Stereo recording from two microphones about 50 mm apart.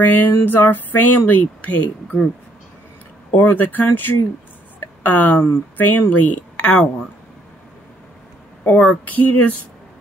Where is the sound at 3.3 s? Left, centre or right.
Left.